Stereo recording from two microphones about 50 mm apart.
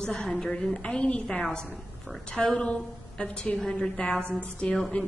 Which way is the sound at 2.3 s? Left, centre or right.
Centre.